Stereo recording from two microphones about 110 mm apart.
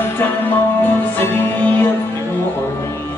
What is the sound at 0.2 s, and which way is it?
Music, 20° left (ahead or behind).